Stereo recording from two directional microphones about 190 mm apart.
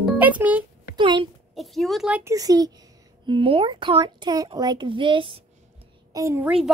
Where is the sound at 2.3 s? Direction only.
20° right (ahead or behind).